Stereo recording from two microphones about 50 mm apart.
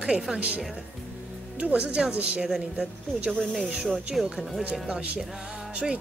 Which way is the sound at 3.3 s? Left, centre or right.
Centre.